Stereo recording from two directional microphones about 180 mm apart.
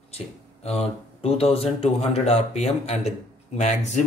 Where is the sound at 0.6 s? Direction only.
35° left (ahead or behind).